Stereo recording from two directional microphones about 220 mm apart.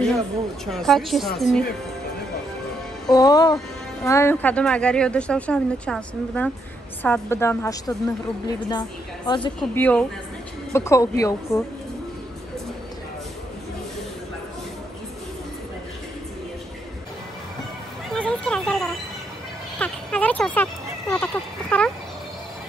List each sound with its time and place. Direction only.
0.7 s a woman's voice: centre (ahead or behind)
3.1 s a woman's voice: 15° left (ahead or behind)
9.6 s a woman's voice: 5° left (ahead or behind)
18.1 s a sound: 5° left (ahead or behind)